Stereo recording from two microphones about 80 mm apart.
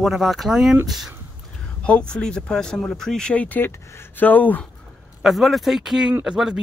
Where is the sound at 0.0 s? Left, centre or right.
Centre.